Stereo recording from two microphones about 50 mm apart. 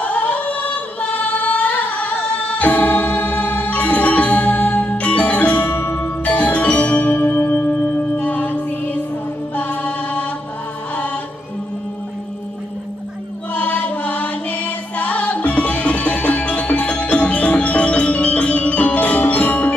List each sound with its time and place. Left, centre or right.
0.0 s singing: left
5.7 s music: left
6.2 s music: left
8.2 s music: left
9.6 s chant: left
13.5 s chant: left